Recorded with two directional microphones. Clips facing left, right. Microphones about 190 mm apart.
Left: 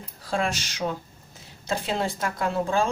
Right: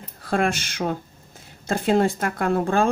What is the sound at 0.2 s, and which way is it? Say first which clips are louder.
Speech: right 5 dB; 55° right (ahead or behind).